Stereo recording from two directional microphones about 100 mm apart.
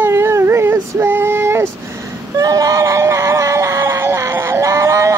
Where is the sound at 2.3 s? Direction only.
35° right (ahead or behind).